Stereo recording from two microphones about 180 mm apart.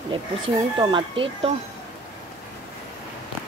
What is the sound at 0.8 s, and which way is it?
Speech, 25° right (ahead or behind).